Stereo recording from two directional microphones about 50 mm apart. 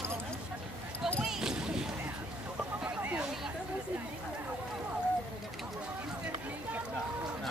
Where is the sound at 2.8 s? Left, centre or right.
Right.